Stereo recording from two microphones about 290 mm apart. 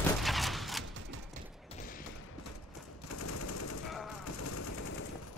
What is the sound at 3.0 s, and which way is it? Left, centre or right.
Machine gun, left.